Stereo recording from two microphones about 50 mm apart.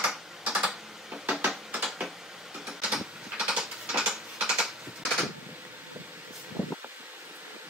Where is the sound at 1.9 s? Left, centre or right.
Centre.